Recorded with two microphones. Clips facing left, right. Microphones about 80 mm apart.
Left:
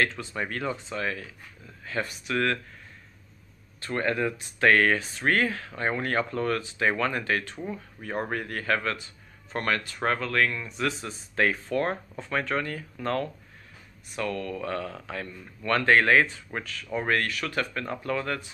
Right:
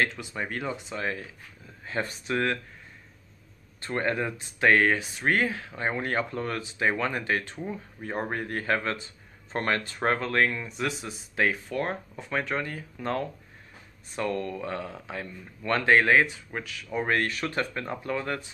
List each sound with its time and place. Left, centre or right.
0.0 s a man's voice: centre
3.8 s a man's voice: right
14.1 s a man's voice: right
14.5 s speech: centre
17.1 s speech: right